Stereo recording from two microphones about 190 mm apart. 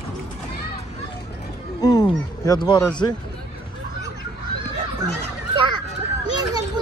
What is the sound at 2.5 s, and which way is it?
Speech, 20° left (ahead or behind).